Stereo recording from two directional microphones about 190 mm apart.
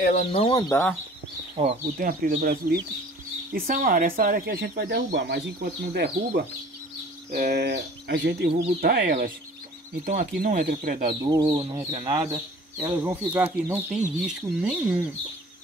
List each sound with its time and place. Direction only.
0.0 s speech: 35° left (ahead or behind); by 0.9 s 15° left (ahead or behind)
1.6 s speech: 40° right (ahead or behind)
11.2 s speech: 25° right (ahead or behind)
13.0 s speech: 10° right (ahead or behind)